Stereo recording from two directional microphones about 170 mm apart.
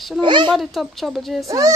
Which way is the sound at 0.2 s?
30° right (ahead or behind).